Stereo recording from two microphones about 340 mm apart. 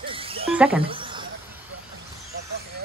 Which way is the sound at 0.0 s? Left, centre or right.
Centre.